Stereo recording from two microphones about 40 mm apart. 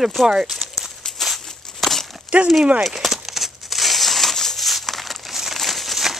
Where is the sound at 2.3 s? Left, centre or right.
Right.